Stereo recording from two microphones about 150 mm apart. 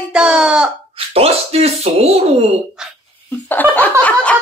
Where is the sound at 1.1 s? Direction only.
40° right (ahead or behind).